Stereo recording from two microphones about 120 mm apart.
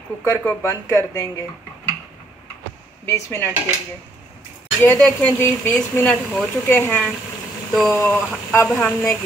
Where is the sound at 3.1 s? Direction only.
25° left (ahead or behind).